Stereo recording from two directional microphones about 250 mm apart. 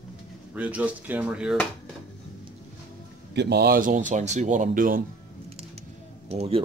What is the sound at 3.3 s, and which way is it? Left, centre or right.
Speech, right.